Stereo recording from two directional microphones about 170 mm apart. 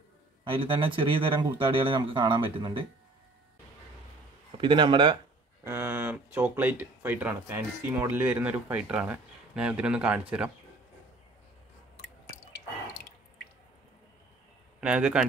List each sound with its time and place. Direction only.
0.5 s speech: 30° right (ahead or behind)
4.6 s speech: 30° right (ahead or behind)
5.6 s speech: 15° right (ahead or behind)
14.8 s speech: 5° right (ahead or behind)